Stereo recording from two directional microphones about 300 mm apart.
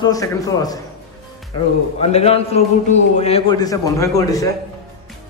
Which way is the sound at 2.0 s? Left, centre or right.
Centre.